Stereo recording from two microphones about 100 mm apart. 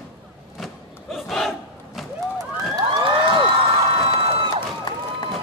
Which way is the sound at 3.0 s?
55° right (ahead or behind).